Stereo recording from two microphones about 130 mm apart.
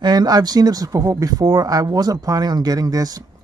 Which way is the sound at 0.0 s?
30° right (ahead or behind).